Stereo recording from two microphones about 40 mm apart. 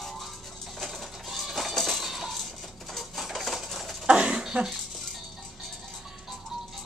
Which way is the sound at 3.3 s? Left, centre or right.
Centre.